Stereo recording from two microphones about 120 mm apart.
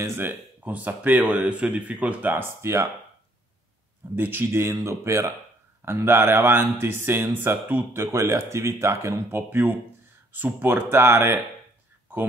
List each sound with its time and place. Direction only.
0.0 s speech: 20° right (ahead or behind)
4.1 s speech: 15° right (ahead or behind)